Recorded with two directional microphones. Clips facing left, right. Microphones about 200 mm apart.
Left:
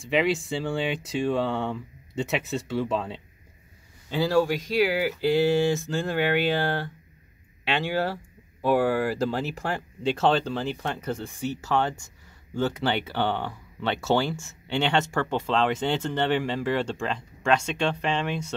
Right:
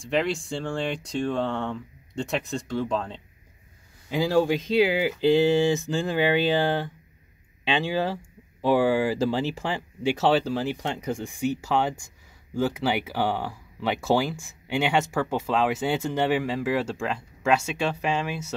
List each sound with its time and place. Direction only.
0.0 s speech: centre (ahead or behind)
4.1 s speech: 15° right (ahead or behind)